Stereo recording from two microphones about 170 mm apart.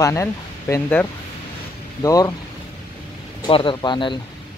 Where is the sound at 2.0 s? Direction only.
20° left (ahead or behind).